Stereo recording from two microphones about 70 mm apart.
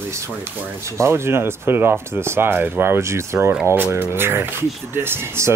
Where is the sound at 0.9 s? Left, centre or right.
Right.